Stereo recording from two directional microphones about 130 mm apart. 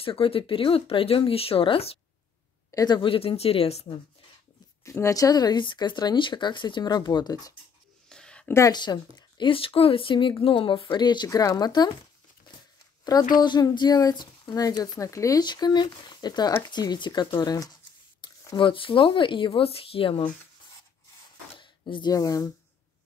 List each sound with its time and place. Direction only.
0.0 s speech: 45° left (ahead or behind)
2.7 s speech: 30° left (ahead or behind); by 3.8 s 50° left (ahead or behind)
4.8 s a woman's voice: 25° left (ahead or behind)
8.1 s a sound: 5° left (ahead or behind)
8.5 s a woman's voice: 30° left (ahead or behind)
13.3 s a woman's voice: 35° left (ahead or behind)
18.6 s a woman's voice: 40° left (ahead or behind)
21.5 s speech: 40° left (ahead or behind)